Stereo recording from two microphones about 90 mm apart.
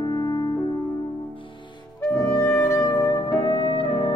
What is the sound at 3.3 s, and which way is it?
Music, 70° left (ahead or behind).